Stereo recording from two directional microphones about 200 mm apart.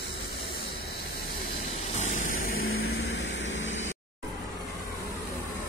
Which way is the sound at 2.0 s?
45° left (ahead or behind).